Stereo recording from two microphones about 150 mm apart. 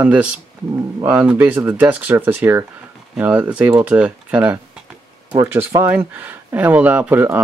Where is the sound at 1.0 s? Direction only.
10° right (ahead or behind).